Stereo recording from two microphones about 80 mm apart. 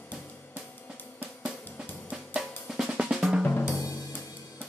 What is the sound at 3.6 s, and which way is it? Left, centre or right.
Drum kit, left.